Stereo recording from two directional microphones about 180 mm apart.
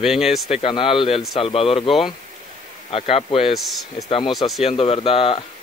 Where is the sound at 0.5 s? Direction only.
30° left (ahead or behind).